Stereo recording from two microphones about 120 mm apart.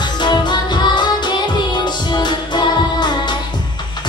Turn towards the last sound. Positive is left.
turn(degrees=40)  # may be behind; listen again after turning